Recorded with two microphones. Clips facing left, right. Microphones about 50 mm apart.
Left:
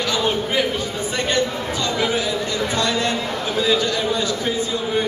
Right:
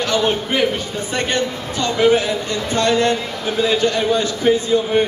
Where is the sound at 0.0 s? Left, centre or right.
Right.